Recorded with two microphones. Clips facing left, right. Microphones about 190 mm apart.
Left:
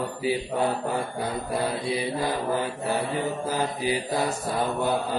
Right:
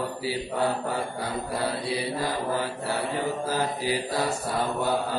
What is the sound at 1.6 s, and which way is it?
Mantra, 20° left (ahead or behind).